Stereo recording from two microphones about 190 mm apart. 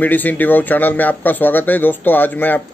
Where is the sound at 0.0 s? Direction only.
10° left (ahead or behind).